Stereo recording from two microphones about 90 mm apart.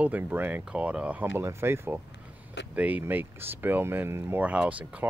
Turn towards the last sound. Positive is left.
turn(degrees=-15)  # may be behind; listen again after turning